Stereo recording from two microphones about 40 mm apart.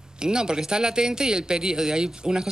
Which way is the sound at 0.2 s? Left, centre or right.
Centre.